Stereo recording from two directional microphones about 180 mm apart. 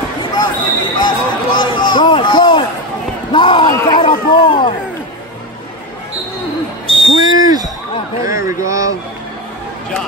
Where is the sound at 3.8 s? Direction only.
25° left (ahead or behind).